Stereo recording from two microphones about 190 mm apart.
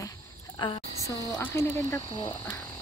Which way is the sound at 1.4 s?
15° left (ahead or behind).